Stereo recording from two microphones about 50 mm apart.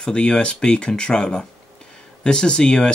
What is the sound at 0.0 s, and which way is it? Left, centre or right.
Speech, centre.